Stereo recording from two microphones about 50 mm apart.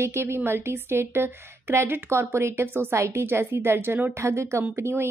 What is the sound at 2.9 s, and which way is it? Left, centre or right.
A woman's voice, right.